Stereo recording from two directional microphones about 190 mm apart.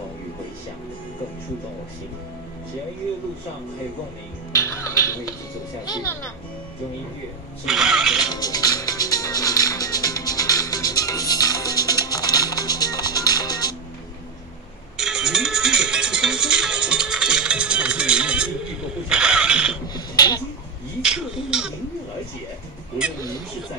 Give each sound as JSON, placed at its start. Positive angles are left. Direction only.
{"t": 4.5, "sound": "music", "side_deg": 15}
{"t": 7.6, "sound": "music", "side_deg": -5}
{"t": 8.3, "sound": "music", "side_deg": 20}
{"t": 15.0, "sound": "music", "side_deg": -5}
{"t": 19.9, "sound": "finger snapping", "side_deg": 20}
{"t": 21.0, "sound": "a sound", "side_deg": -5}